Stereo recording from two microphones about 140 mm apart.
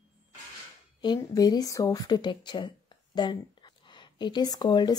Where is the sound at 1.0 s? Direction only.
30° left (ahead or behind).